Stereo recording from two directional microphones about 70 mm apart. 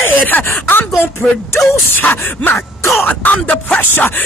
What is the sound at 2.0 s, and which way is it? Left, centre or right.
Speech, left.